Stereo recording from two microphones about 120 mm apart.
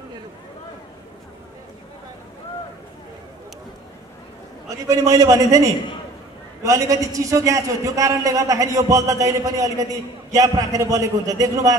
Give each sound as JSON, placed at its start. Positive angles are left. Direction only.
{"t": 4.6, "sound": "a man's voice", "side_deg": -25}